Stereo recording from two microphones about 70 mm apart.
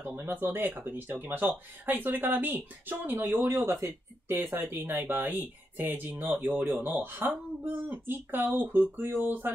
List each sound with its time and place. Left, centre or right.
0.0 s speech: right